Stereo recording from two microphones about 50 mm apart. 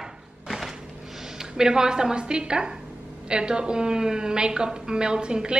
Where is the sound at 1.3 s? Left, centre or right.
Centre.